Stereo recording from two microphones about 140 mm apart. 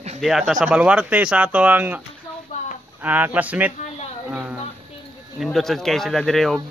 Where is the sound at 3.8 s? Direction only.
50° left (ahead or behind).